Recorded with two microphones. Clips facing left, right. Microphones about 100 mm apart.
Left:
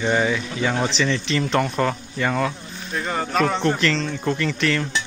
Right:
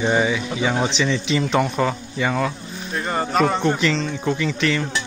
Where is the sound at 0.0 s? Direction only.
10° right (ahead or behind).